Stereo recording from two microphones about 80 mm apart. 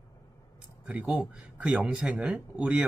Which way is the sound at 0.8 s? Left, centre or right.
Centre.